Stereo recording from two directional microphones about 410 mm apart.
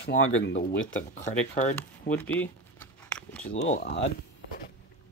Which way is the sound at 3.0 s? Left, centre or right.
Centre.